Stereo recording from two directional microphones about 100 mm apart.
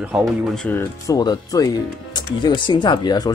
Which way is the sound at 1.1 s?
40° left (ahead or behind).